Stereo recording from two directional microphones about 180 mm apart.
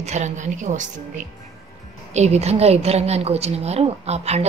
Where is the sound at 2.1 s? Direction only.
40° right (ahead or behind).